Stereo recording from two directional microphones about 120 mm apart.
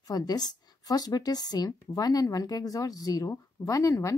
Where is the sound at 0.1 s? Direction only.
35° left (ahead or behind).